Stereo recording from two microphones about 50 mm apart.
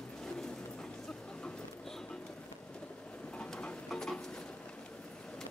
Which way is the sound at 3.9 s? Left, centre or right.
Centre.